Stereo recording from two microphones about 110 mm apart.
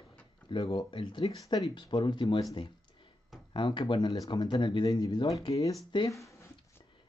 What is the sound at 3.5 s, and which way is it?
Speech, 45° left (ahead or behind).